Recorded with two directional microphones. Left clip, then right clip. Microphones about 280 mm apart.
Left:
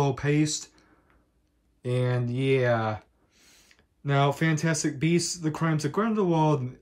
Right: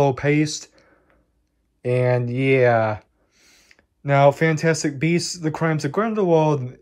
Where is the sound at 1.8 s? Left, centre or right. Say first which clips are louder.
Right 9 dB; centre.